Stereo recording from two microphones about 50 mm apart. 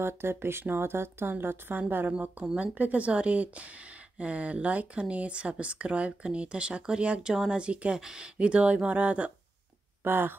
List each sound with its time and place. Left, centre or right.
0.0 s a woman's voice: right
2.6 s speech: right
10.0 s a woman's voice: right